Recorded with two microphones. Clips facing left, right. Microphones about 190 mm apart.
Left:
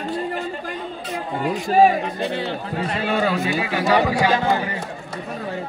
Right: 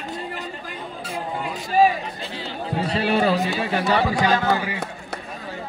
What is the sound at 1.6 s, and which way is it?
Speech, 55° left (ahead or behind).